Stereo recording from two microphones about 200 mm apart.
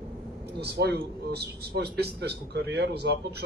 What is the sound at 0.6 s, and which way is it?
A man's voice, 55° right (ahead or behind).